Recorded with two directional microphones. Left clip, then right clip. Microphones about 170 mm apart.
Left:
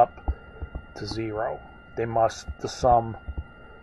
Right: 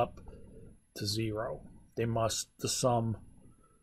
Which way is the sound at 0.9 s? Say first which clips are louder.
Left 4 dB; 35° right (ahead or behind).